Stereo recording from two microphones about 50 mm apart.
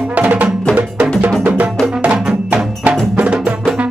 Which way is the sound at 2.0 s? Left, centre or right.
Right.